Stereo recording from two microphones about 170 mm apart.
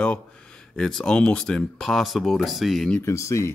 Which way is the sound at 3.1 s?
15° left (ahead or behind).